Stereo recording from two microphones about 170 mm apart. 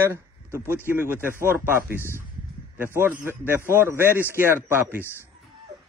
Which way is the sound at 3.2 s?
15° right (ahead or behind).